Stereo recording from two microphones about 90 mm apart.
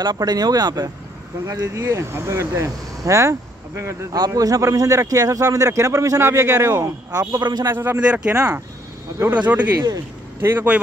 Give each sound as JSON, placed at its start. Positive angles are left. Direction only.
{"t": 0.0, "sound": "a man's voice", "side_deg": -50}
{"t": 4.1, "sound": "a man's voice", "side_deg": -45}
{"t": 7.6, "sound": "speech", "side_deg": -25}
{"t": 8.0, "sound": "speech", "side_deg": -10}